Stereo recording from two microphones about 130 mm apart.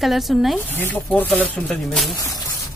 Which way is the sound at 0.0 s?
Centre (ahead or behind).